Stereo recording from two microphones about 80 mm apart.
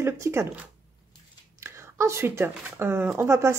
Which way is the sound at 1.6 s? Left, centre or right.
Right.